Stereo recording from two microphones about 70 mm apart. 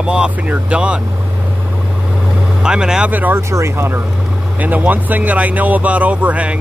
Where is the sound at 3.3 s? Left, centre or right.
Right.